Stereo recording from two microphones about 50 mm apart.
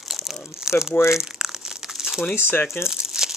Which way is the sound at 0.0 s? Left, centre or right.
Centre.